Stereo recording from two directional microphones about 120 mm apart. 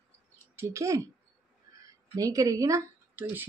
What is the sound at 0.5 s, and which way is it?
Speech, 25° right (ahead or behind).